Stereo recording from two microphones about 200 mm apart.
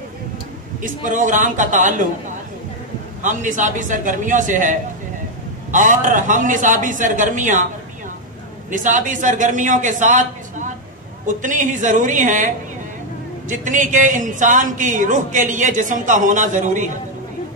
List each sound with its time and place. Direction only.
1.0 s a man's voice: 40° right (ahead or behind)
8.6 s a man's voice: 40° right (ahead or behind)